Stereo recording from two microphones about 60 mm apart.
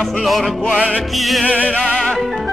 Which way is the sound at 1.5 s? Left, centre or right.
Left.